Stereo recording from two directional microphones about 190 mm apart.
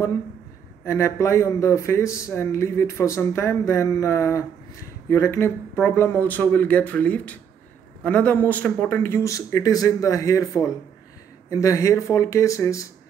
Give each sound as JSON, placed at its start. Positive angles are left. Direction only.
{"t": 0.8, "sound": "speech", "side_deg": 15}